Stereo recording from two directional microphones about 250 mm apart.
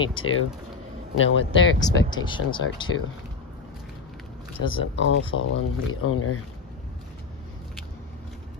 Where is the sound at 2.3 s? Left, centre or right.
Centre.